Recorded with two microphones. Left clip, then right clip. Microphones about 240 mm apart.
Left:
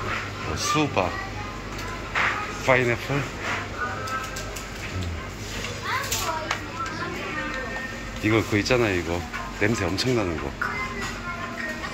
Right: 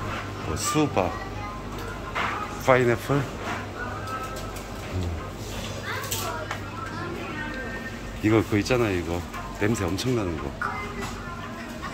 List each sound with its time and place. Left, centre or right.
0.6 s speech: centre
2.6 s speech: centre
8.2 s speech: centre